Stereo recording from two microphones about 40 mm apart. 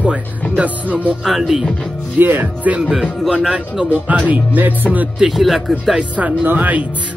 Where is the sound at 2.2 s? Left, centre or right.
Right.